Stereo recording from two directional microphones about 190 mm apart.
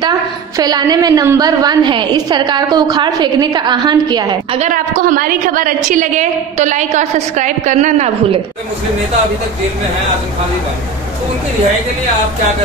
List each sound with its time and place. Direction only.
0.6 s a woman's voice: 20° right (ahead or behind)
4.6 s a woman's voice: 45° right (ahead or behind)